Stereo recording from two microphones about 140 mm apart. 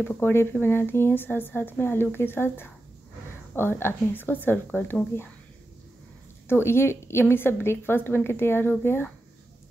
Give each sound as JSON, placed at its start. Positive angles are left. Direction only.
{"t": 0.0, "sound": "speech", "side_deg": 15}
{"t": 6.4, "sound": "speech", "side_deg": 15}